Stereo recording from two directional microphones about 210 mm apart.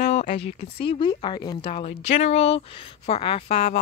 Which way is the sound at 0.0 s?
35° left (ahead or behind).